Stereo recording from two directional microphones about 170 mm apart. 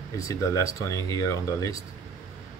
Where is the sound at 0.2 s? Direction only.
20° left (ahead or behind).